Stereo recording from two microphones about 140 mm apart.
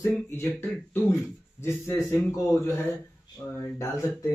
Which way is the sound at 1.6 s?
20° left (ahead or behind).